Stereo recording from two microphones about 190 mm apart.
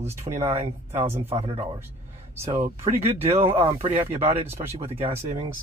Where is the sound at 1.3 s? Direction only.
30° right (ahead or behind).